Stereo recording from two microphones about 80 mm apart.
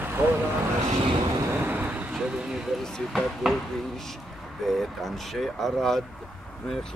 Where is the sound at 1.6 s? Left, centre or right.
Right.